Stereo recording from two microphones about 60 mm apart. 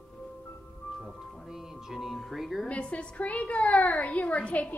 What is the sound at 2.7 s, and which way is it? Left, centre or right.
A woman's voice, centre.